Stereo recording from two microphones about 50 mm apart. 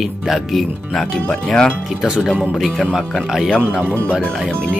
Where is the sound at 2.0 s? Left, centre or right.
Centre.